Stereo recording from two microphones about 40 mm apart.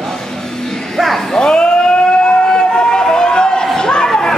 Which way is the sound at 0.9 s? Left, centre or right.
Centre.